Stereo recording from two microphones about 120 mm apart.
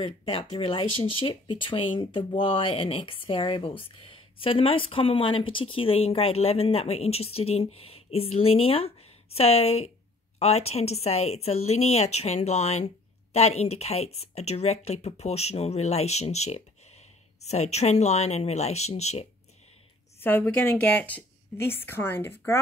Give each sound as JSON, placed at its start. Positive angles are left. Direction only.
{"t": 0.0, "sound": "a woman's voice", "side_deg": 45}
{"t": 20.2, "sound": "a woman's voice", "side_deg": 15}